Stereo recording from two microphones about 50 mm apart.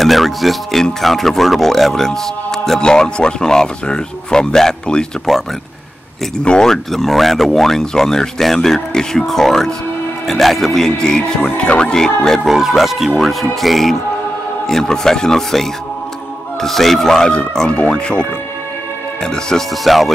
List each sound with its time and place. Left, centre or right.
0.0 s speech: centre
6.4 s speech: centre
6.7 s speech: centre
12.4 s speech: centre
19.8 s speech: centre